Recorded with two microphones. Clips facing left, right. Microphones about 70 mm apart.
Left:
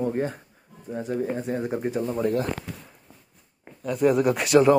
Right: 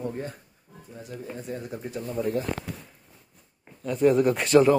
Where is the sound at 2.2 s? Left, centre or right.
Left.